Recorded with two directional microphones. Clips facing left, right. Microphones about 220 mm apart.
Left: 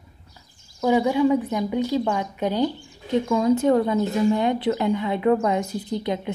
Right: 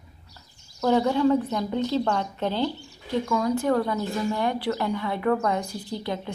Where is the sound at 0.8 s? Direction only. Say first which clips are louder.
Left 2 dB; 10° left (ahead or behind).